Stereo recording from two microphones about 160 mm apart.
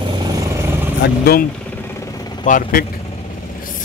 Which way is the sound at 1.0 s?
80° left.